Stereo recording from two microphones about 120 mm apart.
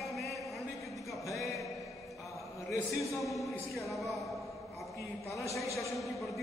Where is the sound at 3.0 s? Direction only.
Centre (ahead or behind).